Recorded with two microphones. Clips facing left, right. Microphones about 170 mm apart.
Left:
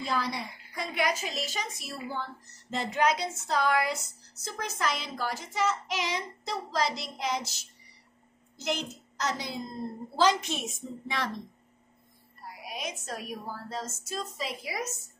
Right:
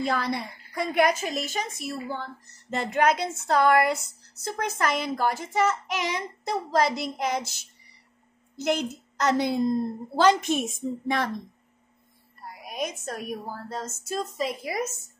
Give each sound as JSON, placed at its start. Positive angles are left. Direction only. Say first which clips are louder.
{"t": 0.0, "sound": "a woman's voice", "louder": "right 5 dB", "side_deg": -60}
{"t": 12.6, "sound": "a woman's voice", "louder": "right 6 dB", "side_deg": -50}